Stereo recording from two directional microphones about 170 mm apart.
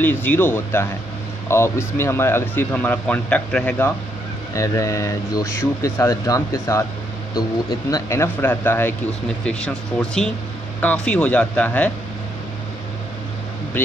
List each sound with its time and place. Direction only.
0.0 s speech: 10° left (ahead or behind)
7.9 s speech: 15° left (ahead or behind)
13.7 s speech: 10° left (ahead or behind)